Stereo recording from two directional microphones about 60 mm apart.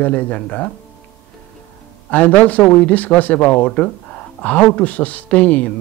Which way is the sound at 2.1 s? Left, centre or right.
Left.